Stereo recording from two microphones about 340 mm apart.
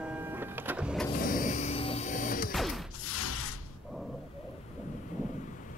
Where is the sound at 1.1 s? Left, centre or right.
Left.